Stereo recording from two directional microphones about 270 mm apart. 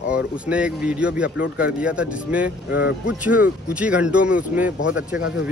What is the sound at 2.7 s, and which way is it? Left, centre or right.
Speech, left.